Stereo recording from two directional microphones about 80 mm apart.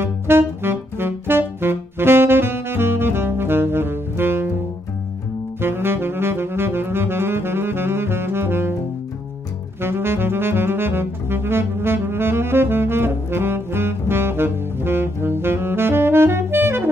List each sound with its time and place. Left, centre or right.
0.0 s music: right
5.6 s saxophone: right
9.8 s saxophone: right